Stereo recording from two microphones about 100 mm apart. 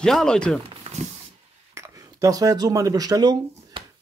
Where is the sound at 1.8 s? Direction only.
30° right (ahead or behind).